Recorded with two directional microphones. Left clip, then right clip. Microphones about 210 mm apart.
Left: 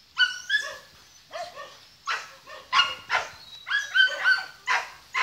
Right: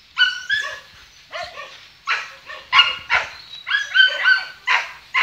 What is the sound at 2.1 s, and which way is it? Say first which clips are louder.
Dog: right 8 dB; 25° right (ahead or behind).